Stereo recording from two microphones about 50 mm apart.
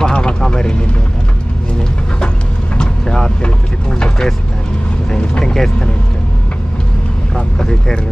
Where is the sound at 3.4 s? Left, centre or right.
Left.